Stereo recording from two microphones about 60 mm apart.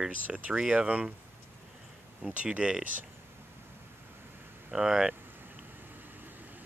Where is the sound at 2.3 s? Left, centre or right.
Right.